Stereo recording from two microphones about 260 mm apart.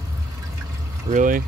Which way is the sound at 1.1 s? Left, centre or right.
Right.